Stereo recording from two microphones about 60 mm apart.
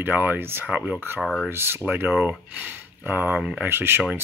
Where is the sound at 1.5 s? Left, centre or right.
Right.